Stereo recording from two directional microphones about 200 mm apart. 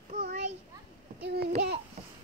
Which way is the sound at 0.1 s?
45° right (ahead or behind).